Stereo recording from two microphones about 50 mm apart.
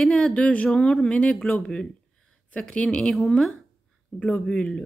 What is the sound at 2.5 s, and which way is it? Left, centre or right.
Speech, left.